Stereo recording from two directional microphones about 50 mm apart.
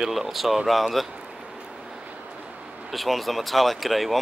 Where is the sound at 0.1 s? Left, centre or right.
Centre.